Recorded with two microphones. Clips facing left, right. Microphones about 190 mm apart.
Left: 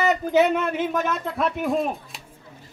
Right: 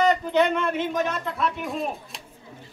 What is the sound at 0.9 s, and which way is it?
Speech, 55° left (ahead or behind).